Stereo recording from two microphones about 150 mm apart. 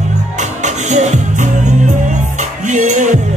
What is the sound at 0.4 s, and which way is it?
Music, 50° right (ahead or behind).